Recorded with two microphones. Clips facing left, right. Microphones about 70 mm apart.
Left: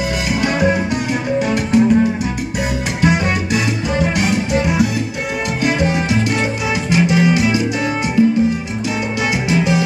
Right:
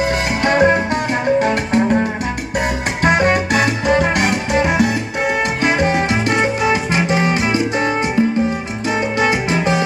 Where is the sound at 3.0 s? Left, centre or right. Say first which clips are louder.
Right 3 dB; right.